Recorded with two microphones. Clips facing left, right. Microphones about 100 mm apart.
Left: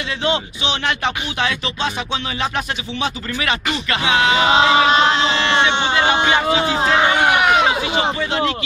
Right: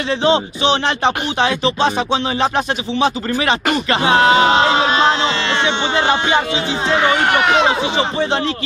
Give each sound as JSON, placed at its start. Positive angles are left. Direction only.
{"t": 0.2, "sound": "speech", "side_deg": -30}
{"t": 5.9, "sound": "speech", "side_deg": -30}
{"t": 7.0, "sound": "speech", "side_deg": 15}
{"t": 7.6, "sound": "speech", "side_deg": -30}